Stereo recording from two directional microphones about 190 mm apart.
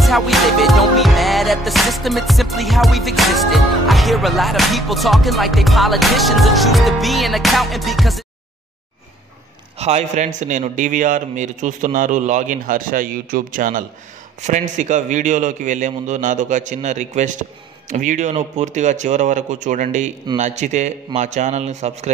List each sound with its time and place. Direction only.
0.0 s music: centre (ahead or behind)
9.8 s a man's voice: 35° right (ahead or behind)